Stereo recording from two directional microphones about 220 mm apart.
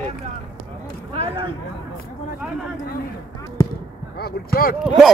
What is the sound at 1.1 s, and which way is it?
Speech, 25° right (ahead or behind).